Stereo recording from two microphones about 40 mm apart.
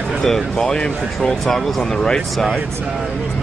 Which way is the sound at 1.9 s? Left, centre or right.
Centre.